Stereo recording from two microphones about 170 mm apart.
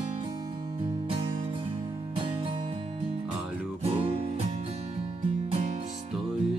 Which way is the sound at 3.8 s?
35° right (ahead or behind).